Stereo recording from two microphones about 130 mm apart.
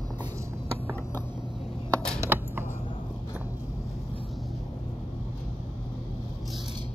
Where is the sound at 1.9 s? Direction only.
5° left (ahead or behind).